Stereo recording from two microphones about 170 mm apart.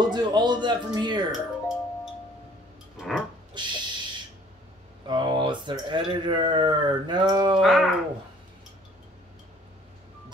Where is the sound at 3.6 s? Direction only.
25° right (ahead or behind).